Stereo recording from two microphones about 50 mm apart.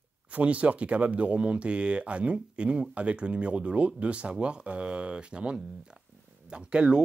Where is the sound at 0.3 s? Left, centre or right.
Right.